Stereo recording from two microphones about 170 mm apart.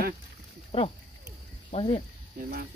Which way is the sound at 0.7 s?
35° left (ahead or behind).